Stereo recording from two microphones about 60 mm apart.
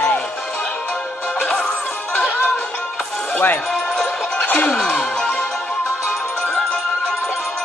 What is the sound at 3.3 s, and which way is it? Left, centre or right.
Speech, left.